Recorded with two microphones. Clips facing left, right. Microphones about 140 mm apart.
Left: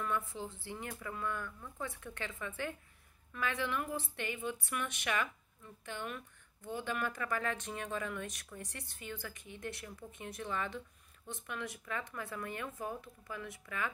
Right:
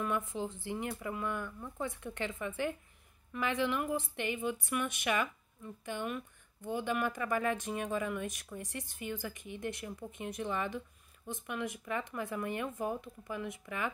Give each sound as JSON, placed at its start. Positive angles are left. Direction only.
{"t": 0.0, "sound": "speech", "side_deg": -15}